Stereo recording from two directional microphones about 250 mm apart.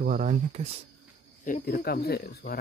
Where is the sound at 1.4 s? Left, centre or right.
Left.